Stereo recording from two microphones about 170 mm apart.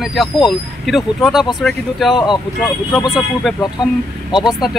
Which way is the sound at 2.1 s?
25° left (ahead or behind).